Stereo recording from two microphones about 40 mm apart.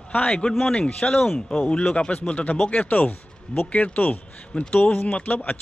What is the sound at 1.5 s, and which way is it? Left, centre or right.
Speech, left.